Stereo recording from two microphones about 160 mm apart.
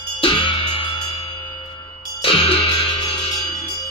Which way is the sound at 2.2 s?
35° left (ahead or behind).